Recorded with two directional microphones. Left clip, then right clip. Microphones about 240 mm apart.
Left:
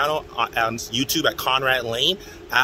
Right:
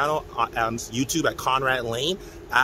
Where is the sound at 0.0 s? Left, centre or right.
Centre.